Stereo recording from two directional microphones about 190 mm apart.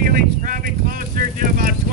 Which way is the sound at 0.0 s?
45° right (ahead or behind).